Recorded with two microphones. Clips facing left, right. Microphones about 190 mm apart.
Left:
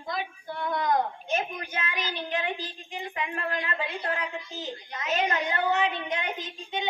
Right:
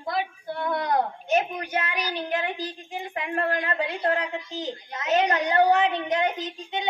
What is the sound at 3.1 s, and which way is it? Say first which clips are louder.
A woman's voice: right 6 dB; 55° right (ahead or behind).